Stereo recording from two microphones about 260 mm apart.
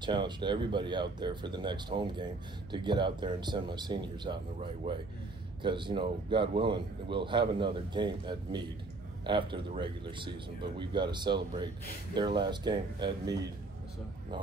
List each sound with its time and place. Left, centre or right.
0.0 s a man's voice: centre
5.6 s a man's voice: centre